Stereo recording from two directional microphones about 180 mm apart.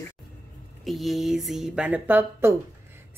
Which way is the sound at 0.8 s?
Centre (ahead or behind).